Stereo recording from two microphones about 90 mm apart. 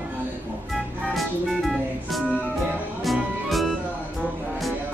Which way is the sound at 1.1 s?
Centre (ahead or behind).